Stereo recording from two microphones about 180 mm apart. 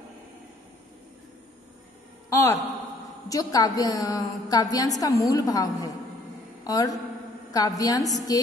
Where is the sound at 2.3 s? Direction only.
15° left (ahead or behind).